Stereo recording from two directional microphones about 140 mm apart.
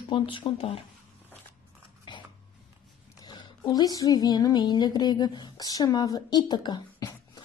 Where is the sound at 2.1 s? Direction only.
35° left (ahead or behind).